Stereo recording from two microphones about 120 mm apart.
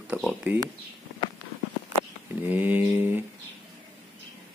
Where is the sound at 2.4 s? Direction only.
15° right (ahead or behind).